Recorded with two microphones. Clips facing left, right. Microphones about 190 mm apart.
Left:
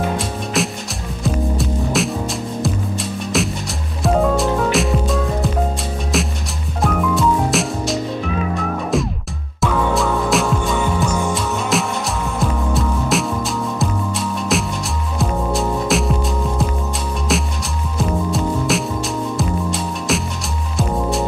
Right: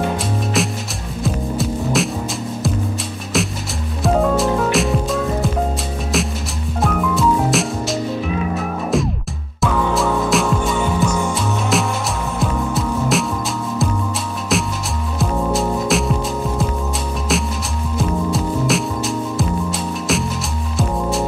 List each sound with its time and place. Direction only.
0.6 s music: centre (ahead or behind)
1.2 s hum: centre (ahead or behind)
3.3 s music: centre (ahead or behind)
11.7 s music: centre (ahead or behind)